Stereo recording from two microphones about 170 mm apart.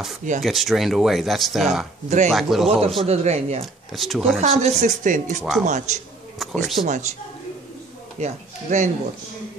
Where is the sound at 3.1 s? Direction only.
40° right (ahead or behind).